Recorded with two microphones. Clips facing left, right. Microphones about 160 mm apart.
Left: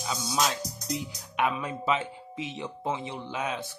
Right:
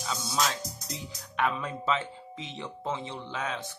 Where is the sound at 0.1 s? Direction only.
15° left (ahead or behind).